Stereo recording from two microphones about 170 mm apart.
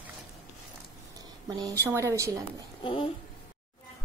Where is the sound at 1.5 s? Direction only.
20° right (ahead or behind).